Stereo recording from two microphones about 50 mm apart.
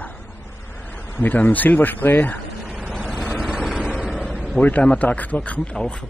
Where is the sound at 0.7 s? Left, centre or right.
Left.